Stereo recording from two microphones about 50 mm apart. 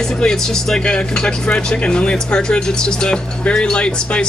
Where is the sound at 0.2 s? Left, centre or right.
Centre.